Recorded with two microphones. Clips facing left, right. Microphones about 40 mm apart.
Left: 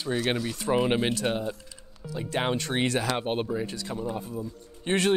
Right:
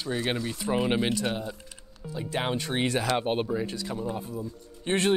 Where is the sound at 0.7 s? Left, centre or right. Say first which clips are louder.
Left 1 dB; centre.